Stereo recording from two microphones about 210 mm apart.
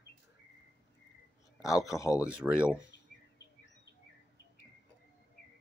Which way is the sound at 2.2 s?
5° right (ahead or behind).